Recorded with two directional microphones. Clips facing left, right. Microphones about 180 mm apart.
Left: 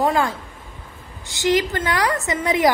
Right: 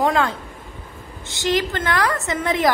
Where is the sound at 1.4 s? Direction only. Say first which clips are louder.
Left 2 dB; 15° left (ahead or behind).